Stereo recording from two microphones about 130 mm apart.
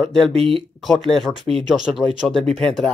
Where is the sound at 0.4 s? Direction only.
45° right (ahead or behind).